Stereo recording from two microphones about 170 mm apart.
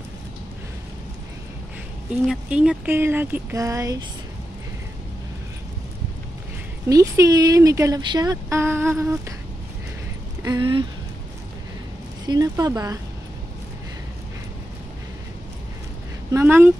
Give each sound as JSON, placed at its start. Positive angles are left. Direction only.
{"t": 2.2, "sound": "speech", "side_deg": -5}
{"t": 6.9, "sound": "speech", "side_deg": -20}
{"t": 10.4, "sound": "speech", "side_deg": -25}
{"t": 12.3, "sound": "speech", "side_deg": -20}
{"t": 16.3, "sound": "speech", "side_deg": -15}